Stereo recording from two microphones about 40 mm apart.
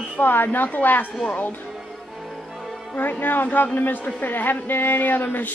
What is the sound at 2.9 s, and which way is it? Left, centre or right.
A man's voice, left.